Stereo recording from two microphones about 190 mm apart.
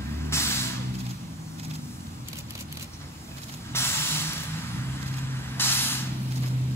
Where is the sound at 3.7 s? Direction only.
15° left (ahead or behind).